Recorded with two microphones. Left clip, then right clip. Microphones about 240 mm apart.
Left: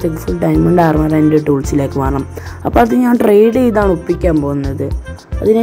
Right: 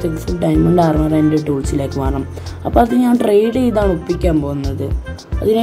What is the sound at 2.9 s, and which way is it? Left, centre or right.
A woman's voice, centre.